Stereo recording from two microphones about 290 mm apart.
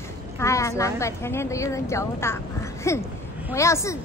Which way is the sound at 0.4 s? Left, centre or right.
Centre.